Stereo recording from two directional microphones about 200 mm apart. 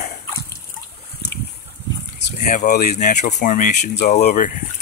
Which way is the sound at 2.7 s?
55° left (ahead or behind).